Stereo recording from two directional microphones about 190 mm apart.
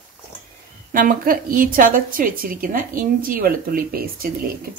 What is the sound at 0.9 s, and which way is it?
A woman's voice, 45° right (ahead or behind).